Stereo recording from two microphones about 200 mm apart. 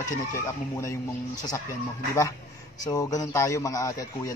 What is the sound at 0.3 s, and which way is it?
A man's voice, 15° left (ahead or behind).